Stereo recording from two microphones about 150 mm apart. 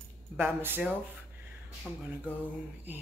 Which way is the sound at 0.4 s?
15° right (ahead or behind).